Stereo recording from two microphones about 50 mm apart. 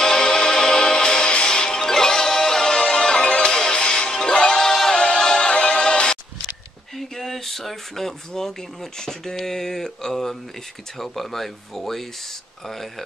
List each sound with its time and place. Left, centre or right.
0.0 s music: centre
7.0 s a sound: centre
9.0 s speech: centre